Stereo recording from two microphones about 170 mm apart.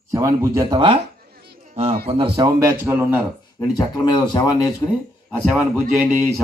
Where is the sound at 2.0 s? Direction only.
30° right (ahead or behind).